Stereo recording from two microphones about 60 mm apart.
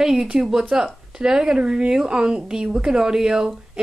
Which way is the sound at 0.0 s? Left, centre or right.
Centre.